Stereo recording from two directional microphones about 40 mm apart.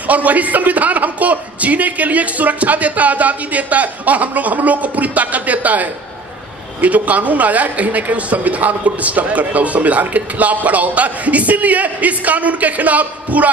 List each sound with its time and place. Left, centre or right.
0.0 s speech: right